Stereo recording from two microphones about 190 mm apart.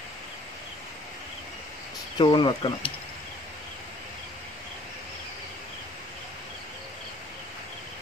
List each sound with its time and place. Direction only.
2.1 s speech: 25° left (ahead or behind)